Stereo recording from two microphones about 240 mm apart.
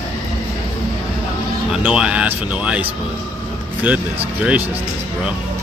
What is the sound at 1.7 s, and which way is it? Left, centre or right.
Speech, centre.